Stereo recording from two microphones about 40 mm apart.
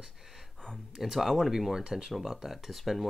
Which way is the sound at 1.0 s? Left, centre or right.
Centre.